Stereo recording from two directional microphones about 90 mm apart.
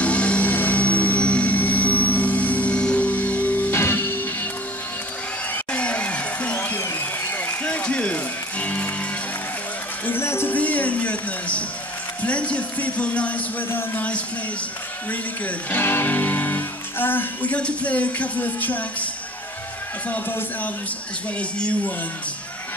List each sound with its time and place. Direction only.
0.0 s vehicle: 15° left (ahead or behind)
5.5 s a sound: 15° left (ahead or behind)
6.8 s music: 25° left (ahead or behind)
10.0 s music: 25° left (ahead or behind)
12.2 s a sound: 15° left (ahead or behind)
15.0 s speech: 20° left (ahead or behind)
20.1 s speech: 20° left (ahead or behind)